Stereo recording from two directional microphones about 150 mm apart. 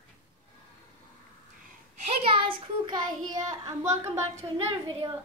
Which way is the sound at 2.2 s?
35° right (ahead or behind).